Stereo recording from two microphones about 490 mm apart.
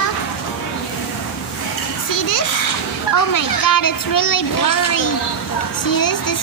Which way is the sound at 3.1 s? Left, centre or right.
Left.